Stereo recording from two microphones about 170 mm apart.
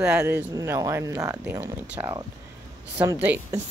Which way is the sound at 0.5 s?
15° right (ahead or behind).